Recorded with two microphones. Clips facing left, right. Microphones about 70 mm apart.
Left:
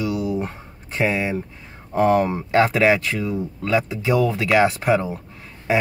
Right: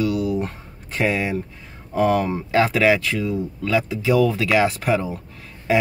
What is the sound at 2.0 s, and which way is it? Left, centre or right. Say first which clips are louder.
Speech: left 2 dB; left.